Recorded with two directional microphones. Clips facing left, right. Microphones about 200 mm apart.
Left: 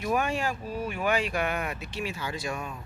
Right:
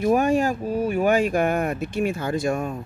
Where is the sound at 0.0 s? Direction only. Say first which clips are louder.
Right 9 dB; 45° right (ahead or behind).